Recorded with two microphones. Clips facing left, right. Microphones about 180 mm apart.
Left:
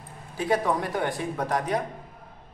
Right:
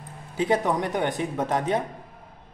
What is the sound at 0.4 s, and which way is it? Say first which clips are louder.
A man's voice: right 2 dB; 20° right (ahead or behind).